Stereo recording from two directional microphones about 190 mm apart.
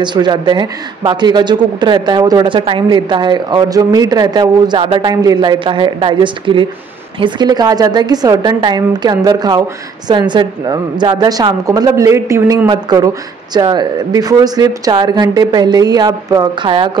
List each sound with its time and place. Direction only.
0.0 s a woman's voice: 25° right (ahead or behind)